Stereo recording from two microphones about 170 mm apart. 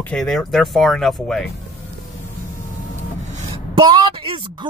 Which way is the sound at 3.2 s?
45° right (ahead or behind).